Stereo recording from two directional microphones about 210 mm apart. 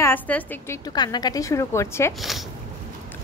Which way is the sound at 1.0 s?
20° left (ahead or behind).